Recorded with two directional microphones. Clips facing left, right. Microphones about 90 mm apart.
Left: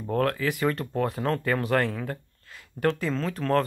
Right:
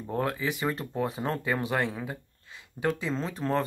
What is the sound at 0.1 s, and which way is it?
Speech, 15° right (ahead or behind).